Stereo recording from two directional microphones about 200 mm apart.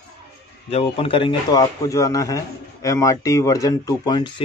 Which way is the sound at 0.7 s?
30° left (ahead or behind).